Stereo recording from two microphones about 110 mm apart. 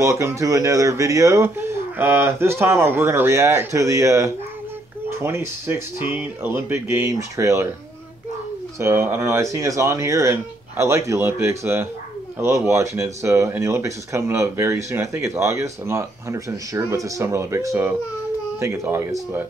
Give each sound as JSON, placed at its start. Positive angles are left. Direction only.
{"t": 0.0, "sound": "speech", "side_deg": -25}
{"t": 8.7, "sound": "speech", "side_deg": -25}